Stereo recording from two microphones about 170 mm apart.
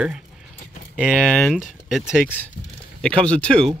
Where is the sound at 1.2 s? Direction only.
5° left (ahead or behind).